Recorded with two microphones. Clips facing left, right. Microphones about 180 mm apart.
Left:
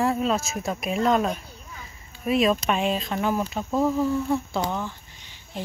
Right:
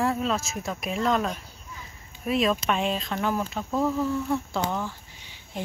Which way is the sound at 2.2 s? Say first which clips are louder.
Left 3 dB; 5° left (ahead or behind).